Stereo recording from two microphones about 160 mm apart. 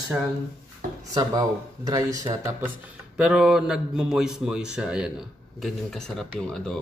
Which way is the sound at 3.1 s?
5° right (ahead or behind).